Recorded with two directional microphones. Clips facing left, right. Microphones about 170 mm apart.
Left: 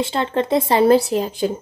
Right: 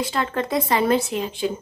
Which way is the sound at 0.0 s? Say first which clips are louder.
Left 4 dB; 25° left (ahead or behind).